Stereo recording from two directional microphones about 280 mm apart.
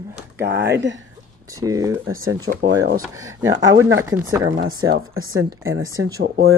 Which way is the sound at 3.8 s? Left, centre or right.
Right.